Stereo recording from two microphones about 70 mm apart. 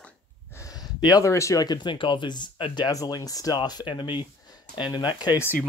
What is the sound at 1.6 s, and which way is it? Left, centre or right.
Speech, left.